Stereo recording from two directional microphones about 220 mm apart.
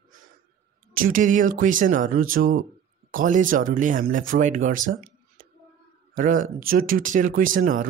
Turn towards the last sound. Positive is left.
turn(degrees=-40)  # may be behind; listen again after turning